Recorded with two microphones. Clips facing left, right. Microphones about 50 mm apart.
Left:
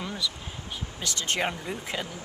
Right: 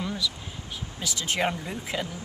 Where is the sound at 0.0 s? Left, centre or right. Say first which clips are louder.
Right 2 dB; centre.